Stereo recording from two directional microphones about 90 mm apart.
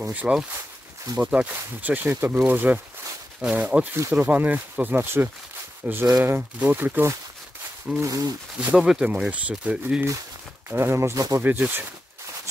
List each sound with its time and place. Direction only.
0.0 s speech: 15° right (ahead or behind)
8.0 s speech: 40° right (ahead or behind)
8.5 s speech: 10° right (ahead or behind)
10.7 s speech: 30° right (ahead or behind)
11.4 s speech: 20° right (ahead or behind)